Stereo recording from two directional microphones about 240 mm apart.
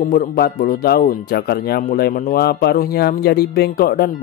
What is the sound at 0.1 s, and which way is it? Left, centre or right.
Speech, left.